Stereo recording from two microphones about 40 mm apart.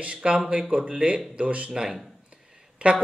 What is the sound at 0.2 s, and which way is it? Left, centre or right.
A man's voice, right.